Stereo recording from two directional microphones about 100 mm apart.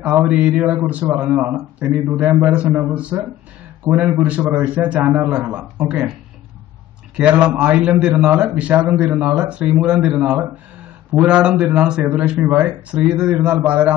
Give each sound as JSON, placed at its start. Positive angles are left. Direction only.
{"t": 0.0, "sound": "a man's voice", "side_deg": -20}
{"t": 7.2, "sound": "a man's voice", "side_deg": -10}